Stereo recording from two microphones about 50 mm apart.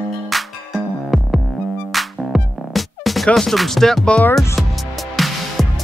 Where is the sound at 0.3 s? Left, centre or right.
Centre.